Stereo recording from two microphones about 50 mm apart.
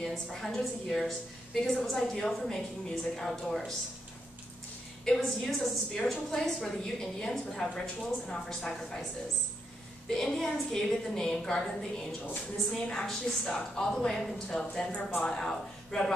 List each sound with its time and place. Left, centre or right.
0.0 s a woman's voice: centre
5.0 s a woman's voice: centre
10.0 s a woman's voice: centre